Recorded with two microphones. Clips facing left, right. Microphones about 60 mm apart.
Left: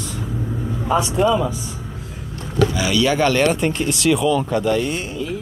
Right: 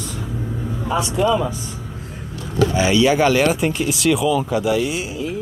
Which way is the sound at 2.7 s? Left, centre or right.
Right.